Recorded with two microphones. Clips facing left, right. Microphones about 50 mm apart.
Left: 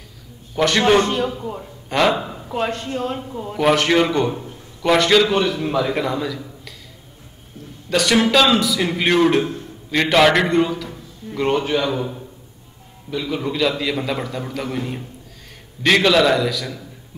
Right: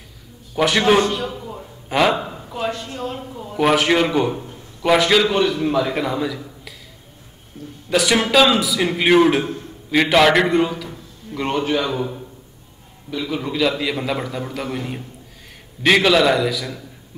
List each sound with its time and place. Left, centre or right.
0.6 s a man's voice: centre
1.0 s a man's voice: left
1.9 s a man's voice: centre
2.6 s speech: left
3.5 s a man's voice: centre
7.9 s a man's voice: centre